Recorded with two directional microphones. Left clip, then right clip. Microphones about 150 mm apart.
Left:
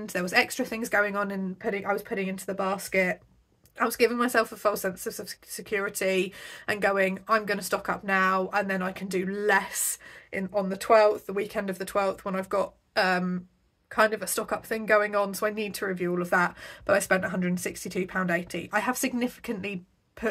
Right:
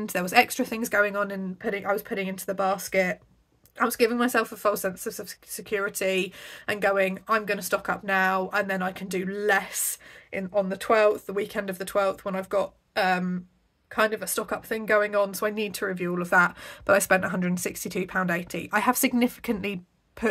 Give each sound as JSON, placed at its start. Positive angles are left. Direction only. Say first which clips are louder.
{"t": 0.0, "sound": "speech", "louder": "right 3 dB", "side_deg": -35}